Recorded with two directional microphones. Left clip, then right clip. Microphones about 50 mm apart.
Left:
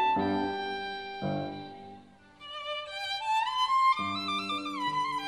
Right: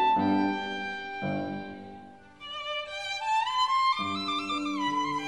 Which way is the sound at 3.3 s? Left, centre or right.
Left.